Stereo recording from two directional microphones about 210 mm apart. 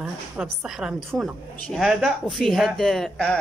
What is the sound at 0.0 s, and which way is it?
Speech, centre (ahead or behind).